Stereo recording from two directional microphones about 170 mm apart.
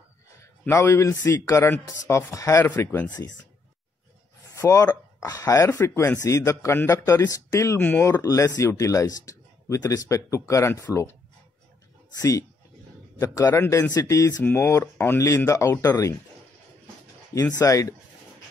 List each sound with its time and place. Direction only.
0.4 s speech: 15° left (ahead or behind)
4.6 s speech: 20° left (ahead or behind)
12.2 s speech: 20° left (ahead or behind)
17.3 s speech: 20° left (ahead or behind)